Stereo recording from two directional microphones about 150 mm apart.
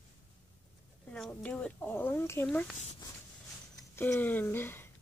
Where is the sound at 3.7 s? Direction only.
15° left (ahead or behind).